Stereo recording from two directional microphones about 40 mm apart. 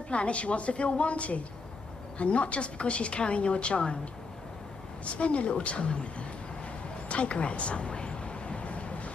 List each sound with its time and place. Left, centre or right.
0.1 s a woman's voice: left
5.1 s a woman's voice: left
7.1 s a sound: left